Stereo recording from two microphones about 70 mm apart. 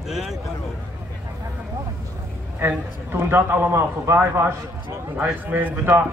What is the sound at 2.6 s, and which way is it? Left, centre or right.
A man's voice, right.